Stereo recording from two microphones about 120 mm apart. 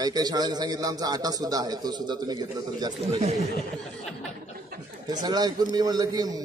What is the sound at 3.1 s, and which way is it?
Speech, 65° right (ahead or behind).